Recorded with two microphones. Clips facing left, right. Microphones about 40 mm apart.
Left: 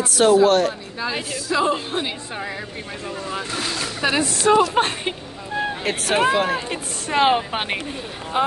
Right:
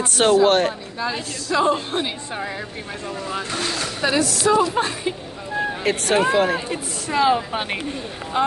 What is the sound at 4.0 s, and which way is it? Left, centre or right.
A woman's voice, left.